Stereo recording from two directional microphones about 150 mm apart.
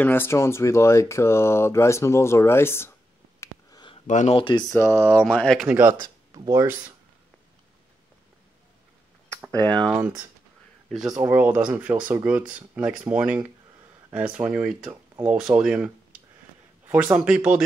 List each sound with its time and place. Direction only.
0.0 s speech: 15° left (ahead or behind)
3.3 s a sound: 30° left (ahead or behind)
4.1 s speech: 55° left (ahead or behind)
4.4 s speech: 35° left (ahead or behind)
4.6 s speech: 15° left (ahead or behind)
5.7 s speech: 15° right (ahead or behind)
5.9 s speech: 30° right (ahead or behind)
9.5 s speech: 10° left (ahead or behind)
10.9 s speech: 5° right (ahead or behind)
11.2 s speech: 15° right (ahead or behind)